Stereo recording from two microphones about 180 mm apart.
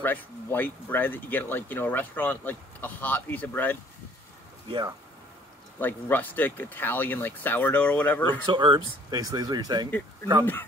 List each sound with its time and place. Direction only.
0.0 s speech: 10° left (ahead or behind)
4.6 s speech: 25° right (ahead or behind)
5.8 s speech: 10° left (ahead or behind)
8.5 s speech: 25° right (ahead or behind)